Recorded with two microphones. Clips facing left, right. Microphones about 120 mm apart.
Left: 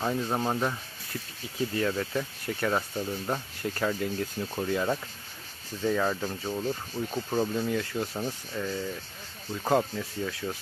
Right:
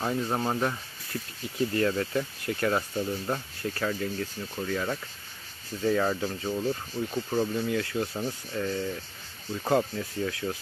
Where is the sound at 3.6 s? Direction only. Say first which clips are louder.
Left 1 dB; 20° left (ahead or behind).